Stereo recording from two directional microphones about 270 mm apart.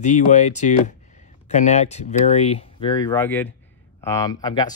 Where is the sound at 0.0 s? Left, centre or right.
Left.